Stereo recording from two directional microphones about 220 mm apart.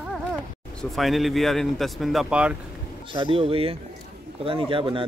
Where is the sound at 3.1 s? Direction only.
25° right (ahead or behind).